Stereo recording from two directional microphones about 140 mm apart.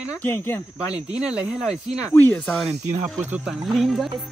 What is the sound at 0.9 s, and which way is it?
Speech, 10° right (ahead or behind).